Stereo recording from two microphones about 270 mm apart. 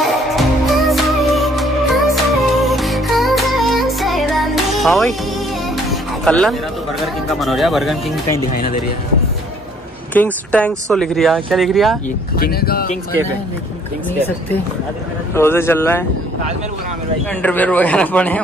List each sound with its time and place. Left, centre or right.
0.0 s music: centre
7.2 s speech: centre
10.1 s speech: centre
12.4 s speech: left
15.3 s a man's voice: centre
17.4 s speech: centre